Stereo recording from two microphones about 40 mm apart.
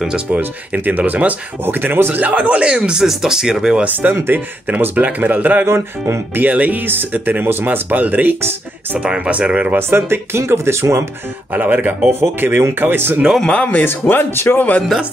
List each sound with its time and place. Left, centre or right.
0.8 s speech: right
2.1 s a man's voice: right
2.6 s speech: right
3.8 s speech: right
4.1 s speech: right
5.0 s speech: right
6.9 s speech: right
9.0 s speech: right
9.8 s speech: right
11.5 s speech: right
12.1 s speech: right
13.6 s a man's voice: left
13.8 s speech: left